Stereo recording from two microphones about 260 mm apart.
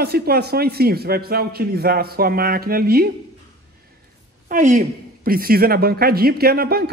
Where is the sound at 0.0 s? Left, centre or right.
Right.